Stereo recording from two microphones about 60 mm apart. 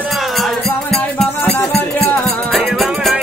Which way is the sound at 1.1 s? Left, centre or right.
Centre.